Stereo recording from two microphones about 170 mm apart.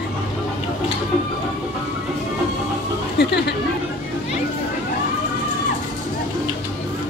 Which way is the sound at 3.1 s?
80° left.